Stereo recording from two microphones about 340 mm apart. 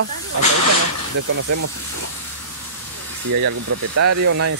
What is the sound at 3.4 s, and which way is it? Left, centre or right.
Speech, right.